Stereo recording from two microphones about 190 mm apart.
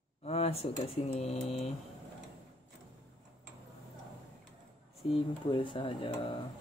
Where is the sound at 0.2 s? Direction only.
30° left (ahead or behind).